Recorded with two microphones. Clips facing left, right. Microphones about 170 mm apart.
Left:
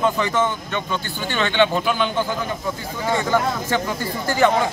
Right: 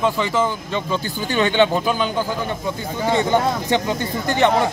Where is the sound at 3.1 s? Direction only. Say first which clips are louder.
Right 2 dB; 20° right (ahead or behind).